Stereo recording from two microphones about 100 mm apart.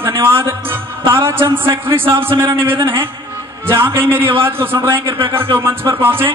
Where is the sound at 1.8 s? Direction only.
25° right (ahead or behind).